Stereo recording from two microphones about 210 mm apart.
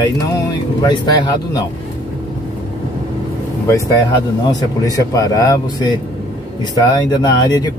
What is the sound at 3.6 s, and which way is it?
Speech, 15° left (ahead or behind).